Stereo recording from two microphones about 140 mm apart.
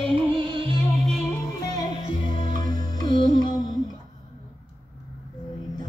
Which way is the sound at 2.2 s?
65° right (ahead or behind).